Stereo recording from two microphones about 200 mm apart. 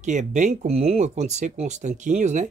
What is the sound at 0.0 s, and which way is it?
Speech, 35° right (ahead or behind).